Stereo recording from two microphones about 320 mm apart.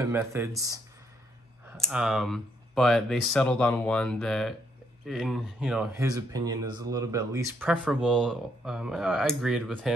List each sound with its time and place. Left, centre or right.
0.0 s speech: centre
1.8 s speech: centre